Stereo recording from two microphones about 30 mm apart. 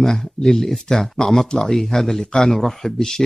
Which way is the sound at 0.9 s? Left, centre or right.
Left.